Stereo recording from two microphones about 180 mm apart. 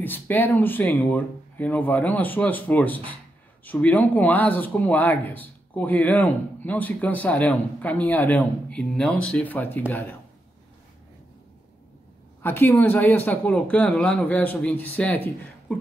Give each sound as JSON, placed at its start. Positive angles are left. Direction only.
{"t": 0.0, "sound": "speech", "side_deg": 10}
{"t": 12.4, "sound": "speech", "side_deg": 10}